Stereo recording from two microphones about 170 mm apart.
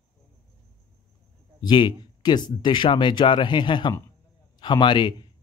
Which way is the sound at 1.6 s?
25° left (ahead or behind).